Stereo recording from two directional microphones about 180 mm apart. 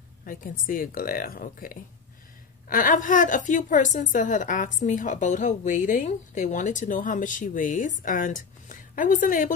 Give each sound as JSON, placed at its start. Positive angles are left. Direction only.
{"t": 0.2, "sound": "a woman's voice", "side_deg": 50}